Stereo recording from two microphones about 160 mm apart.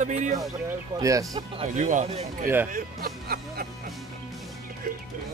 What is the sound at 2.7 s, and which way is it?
Speech, 65° right (ahead or behind).